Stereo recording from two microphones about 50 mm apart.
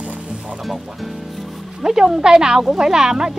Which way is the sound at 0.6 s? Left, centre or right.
Centre.